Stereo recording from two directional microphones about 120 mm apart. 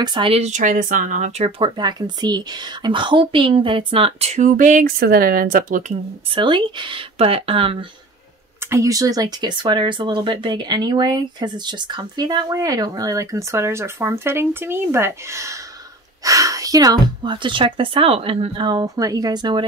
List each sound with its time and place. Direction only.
0.0 s speech: 40° right (ahead or behind)
0.3 s speech: 80° right
1.6 s a woman's voice: 35° right (ahead or behind); by 4.7 s 90° right
6.3 s speech: 40° right (ahead or behind)
7.2 s a woman's voice: 55° right (ahead or behind)
8.6 s speech: 25° right (ahead or behind)